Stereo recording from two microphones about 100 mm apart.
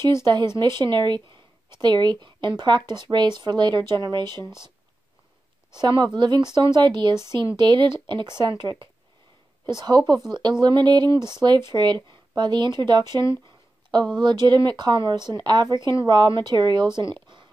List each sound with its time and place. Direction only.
0.2 s speech: 50° right (ahead or behind)
5.8 s speech: 45° right (ahead or behind)
17.1 s a sound: 50° right (ahead or behind)